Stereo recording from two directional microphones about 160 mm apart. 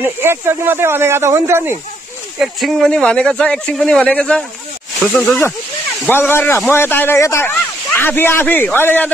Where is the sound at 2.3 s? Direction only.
Centre (ahead or behind).